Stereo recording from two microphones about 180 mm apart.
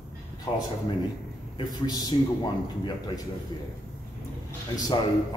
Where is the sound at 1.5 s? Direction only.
20° left (ahead or behind).